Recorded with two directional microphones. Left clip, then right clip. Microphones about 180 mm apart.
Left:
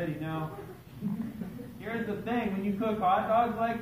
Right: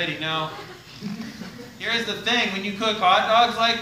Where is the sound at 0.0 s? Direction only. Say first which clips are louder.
Right 10 dB; 15° right (ahead or behind).